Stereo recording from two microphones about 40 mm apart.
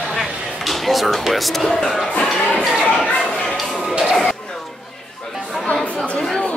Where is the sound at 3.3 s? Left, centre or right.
Left.